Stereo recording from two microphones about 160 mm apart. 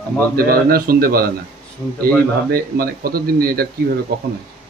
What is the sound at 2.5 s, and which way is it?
Speech, 70° right (ahead or behind).